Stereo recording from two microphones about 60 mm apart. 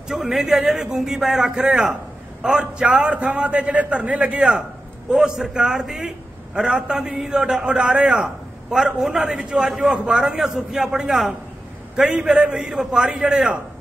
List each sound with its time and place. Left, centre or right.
0.1 s a man's voice: centre